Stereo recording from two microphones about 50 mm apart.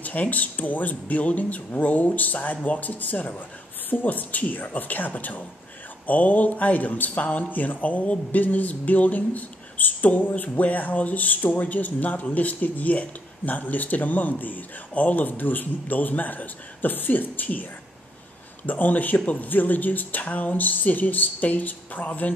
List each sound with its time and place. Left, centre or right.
0.0 s speech: left
18.7 s speech: left